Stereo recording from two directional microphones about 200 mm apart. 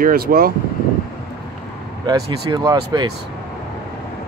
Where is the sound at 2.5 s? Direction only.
20° right (ahead or behind).